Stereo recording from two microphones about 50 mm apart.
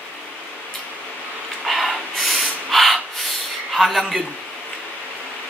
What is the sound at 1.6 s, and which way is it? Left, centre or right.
Rub, centre.